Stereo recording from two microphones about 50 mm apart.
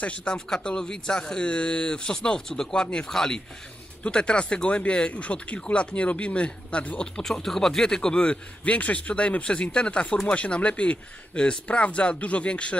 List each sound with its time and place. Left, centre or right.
0.0 s speech: centre
7.2 s speech: centre